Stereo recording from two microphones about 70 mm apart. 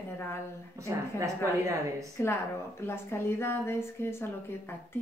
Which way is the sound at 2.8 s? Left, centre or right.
Left.